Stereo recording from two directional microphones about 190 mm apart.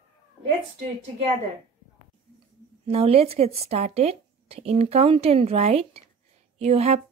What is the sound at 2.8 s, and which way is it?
Speech, 30° right (ahead or behind).